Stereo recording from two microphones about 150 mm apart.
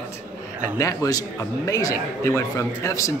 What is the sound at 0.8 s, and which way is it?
Speech, 25° left (ahead or behind).